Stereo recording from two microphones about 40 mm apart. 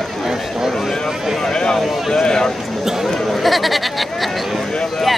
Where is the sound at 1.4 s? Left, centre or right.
Centre.